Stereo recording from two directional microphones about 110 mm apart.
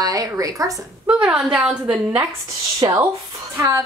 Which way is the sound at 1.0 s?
10° right (ahead or behind).